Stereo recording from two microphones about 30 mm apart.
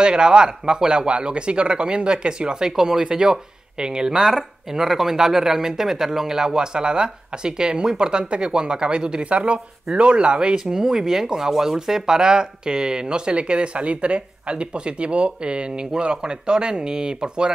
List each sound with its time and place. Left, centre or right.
0.0 s speech: right
4.2 s speech: centre; by 9.2 s right
9.2 s speech: right
10.5 s speech: centre